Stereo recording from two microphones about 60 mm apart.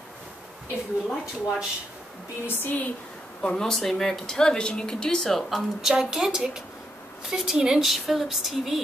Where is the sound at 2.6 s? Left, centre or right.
Left.